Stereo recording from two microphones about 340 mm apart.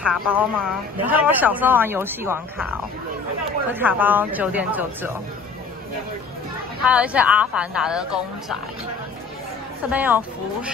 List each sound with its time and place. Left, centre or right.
0.0 s speech: centre
3.7 s speech: centre
6.8 s speech: centre
9.8 s speech: centre